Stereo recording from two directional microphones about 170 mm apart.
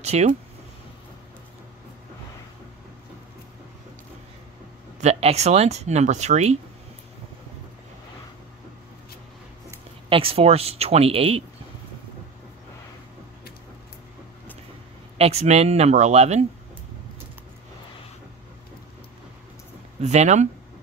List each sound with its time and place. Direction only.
0.0 s speech: 40° right (ahead or behind)
5.0 s speech: 40° right (ahead or behind)
10.0 s speech: 30° right (ahead or behind)
15.1 s speech: 40° right (ahead or behind)
20.0 s speech: 40° right (ahead or behind)